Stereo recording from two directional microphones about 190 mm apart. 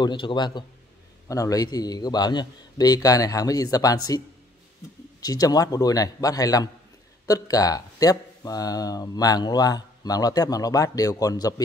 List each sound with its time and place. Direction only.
0.0 s speech: 25° left (ahead or behind)
5.2 s speech: 20° left (ahead or behind)